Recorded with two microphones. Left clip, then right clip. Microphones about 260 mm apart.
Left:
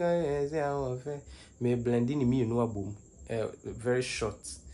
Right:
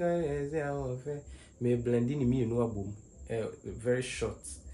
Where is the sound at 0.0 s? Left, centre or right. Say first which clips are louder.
Left 3 dB; left.